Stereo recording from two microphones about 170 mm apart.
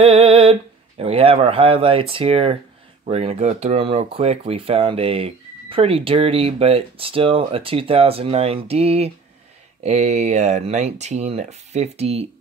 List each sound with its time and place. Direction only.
0.0 s speech: 35° right (ahead or behind)